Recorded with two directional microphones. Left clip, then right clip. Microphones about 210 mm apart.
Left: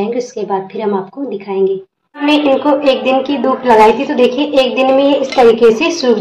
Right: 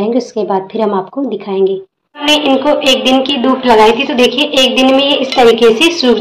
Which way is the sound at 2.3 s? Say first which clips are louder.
Right 1 dB; centre (ahead or behind).